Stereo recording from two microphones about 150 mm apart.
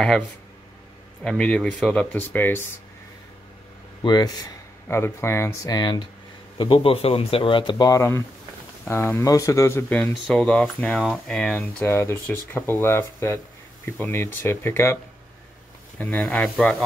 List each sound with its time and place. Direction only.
1.2 s speech: 5° left (ahead or behind)
4.0 s speech: 25° left (ahead or behind)
4.8 s speech: 15° left (ahead or behind)
9.9 s speech: 5° left (ahead or behind)
11.8 s speech: 15° left (ahead or behind)
16.0 s speech: 10° left (ahead or behind)